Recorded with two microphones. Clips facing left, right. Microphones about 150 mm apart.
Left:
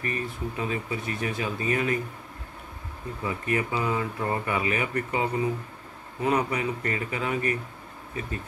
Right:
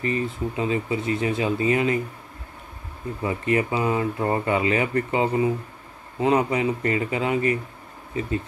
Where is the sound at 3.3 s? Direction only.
20° right (ahead or behind).